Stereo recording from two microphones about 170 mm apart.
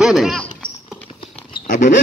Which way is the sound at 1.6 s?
45° left (ahead or behind).